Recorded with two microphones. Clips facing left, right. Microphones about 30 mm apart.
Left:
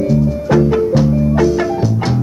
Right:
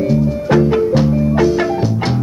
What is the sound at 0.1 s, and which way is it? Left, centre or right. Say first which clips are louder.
Music: even; right.